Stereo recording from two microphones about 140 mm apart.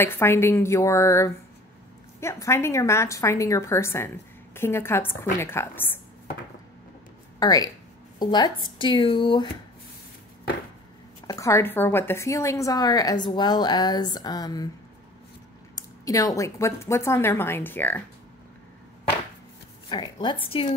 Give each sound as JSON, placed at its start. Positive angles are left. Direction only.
{"t": 0.0, "sound": "a woman's voice", "side_deg": 15}
{"t": 7.3, "sound": "speech", "side_deg": 25}
{"t": 11.2, "sound": "a woman's voice", "side_deg": 20}
{"t": 15.7, "sound": "a woman's voice", "side_deg": 25}
{"t": 19.9, "sound": "speech", "side_deg": 35}